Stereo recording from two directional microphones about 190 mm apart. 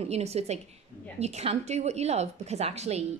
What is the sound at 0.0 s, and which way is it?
A woman's voice, 35° right (ahead or behind).